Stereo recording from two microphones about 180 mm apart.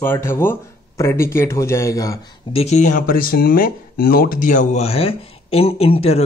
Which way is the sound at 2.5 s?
40° left (ahead or behind).